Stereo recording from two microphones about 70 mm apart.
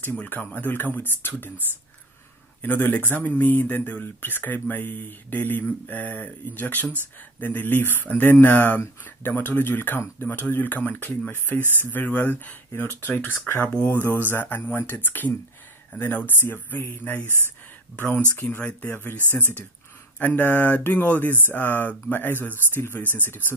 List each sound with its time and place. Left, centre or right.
0.1 s speech: left
2.6 s speech: left
20.2 s speech: left